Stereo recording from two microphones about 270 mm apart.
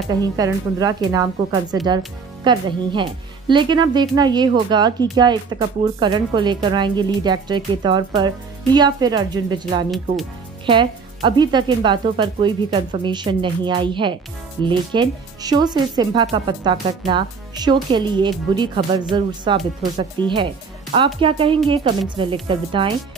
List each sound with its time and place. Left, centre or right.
0.1 s speech: centre